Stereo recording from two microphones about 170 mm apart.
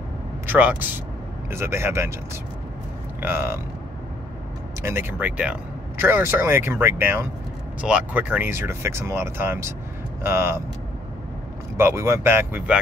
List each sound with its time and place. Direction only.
0.5 s speech: 10° right (ahead or behind)
3.2 s speech: 15° right (ahead or behind)
4.8 s speech: 10° right (ahead or behind)
11.7 s speech: 15° right (ahead or behind)